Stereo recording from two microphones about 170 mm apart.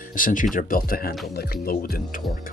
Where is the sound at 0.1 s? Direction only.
50° left (ahead or behind).